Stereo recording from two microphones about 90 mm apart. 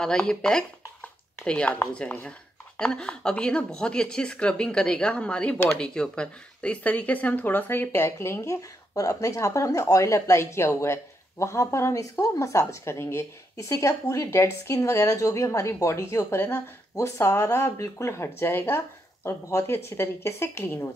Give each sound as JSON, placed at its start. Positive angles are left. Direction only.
{"t": 0.0, "sound": "speech", "side_deg": 10}